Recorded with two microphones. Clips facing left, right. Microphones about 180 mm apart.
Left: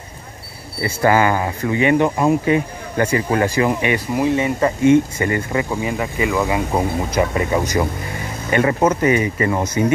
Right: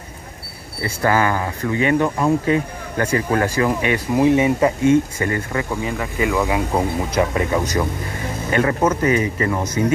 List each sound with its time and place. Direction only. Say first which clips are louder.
1.0 s speech: left 3 dB; 15° left (ahead or behind)
4.2 s speech: right 4 dB; 10° right (ahead or behind)
5.2 s speech: left 2 dB; 10° left (ahead or behind)